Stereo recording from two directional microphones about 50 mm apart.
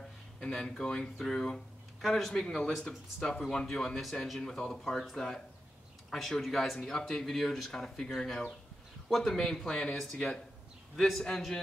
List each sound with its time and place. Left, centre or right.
0.4 s speech: centre
2.4 s speech: centre